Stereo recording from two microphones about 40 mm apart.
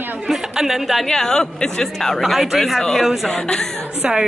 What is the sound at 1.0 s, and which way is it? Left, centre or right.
A woman's voice, centre.